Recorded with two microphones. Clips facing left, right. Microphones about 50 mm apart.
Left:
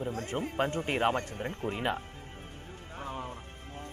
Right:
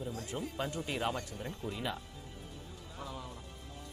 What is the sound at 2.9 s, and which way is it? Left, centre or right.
Music, left.